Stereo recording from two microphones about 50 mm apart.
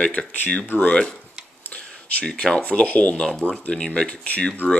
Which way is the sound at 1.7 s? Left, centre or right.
Left.